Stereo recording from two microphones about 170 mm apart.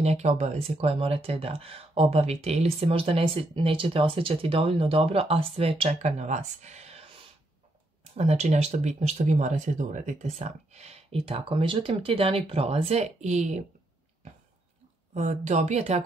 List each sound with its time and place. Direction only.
0.0 s speech: 40° right (ahead or behind)
15.1 s speech: 45° right (ahead or behind)